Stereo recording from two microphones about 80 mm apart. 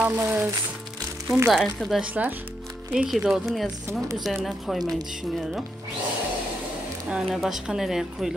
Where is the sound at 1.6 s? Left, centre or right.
Centre.